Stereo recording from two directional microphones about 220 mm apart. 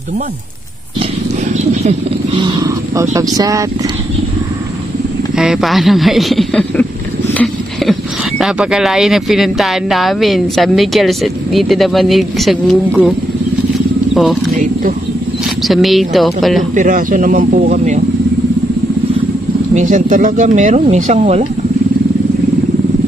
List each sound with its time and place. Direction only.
1.9 s speech: 25° right (ahead or behind)
5.4 s speech: centre (ahead or behind)
14.1 s speech: centre (ahead or behind)
15.6 s speech: centre (ahead or behind)
16.7 s speech: 35° right (ahead or behind)
19.7 s speech: 35° right (ahead or behind)